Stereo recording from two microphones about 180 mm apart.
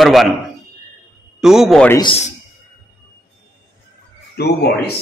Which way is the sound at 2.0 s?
30° left (ahead or behind).